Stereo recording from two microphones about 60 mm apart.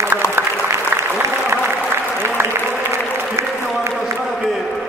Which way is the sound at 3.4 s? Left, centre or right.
Right.